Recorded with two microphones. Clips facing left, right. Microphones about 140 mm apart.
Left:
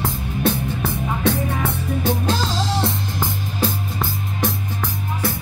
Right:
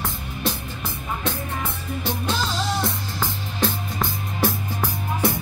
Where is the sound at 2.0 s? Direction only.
40° left (ahead or behind).